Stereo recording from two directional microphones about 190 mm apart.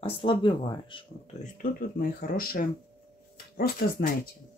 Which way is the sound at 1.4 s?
45° left (ahead or behind).